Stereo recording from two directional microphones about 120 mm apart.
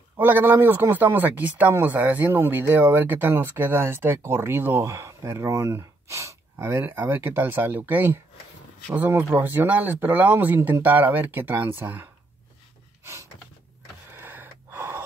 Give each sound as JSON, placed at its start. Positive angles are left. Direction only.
{"t": 0.2, "sound": "speech", "side_deg": -15}
{"t": 13.0, "sound": "a sound", "side_deg": -25}
{"t": 14.1, "sound": "gasp", "side_deg": -20}